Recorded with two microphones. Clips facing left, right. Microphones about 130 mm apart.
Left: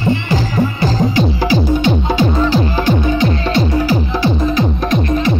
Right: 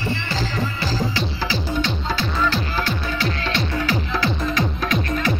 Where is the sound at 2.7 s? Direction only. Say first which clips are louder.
Left 10 dB; 15° left (ahead or behind).